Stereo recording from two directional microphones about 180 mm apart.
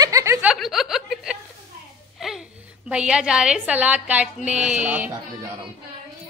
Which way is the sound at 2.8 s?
5° right (ahead or behind).